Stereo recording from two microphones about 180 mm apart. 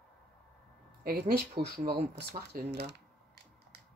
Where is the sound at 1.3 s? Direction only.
60° right (ahead or behind).